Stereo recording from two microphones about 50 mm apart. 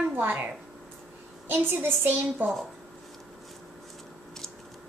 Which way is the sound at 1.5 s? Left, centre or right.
Right.